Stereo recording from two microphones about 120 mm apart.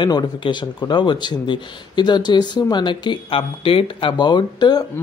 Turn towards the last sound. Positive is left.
turn(degrees=35)  # may be behind; listen again after turning